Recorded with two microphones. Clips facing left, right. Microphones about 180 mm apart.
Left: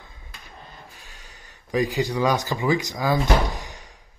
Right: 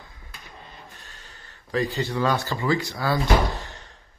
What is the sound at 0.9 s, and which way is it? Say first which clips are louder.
A man's voice: even; 10° left (ahead or behind).